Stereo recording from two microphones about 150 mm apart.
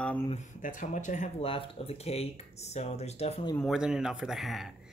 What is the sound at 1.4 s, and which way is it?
Speech, 40° left (ahead or behind).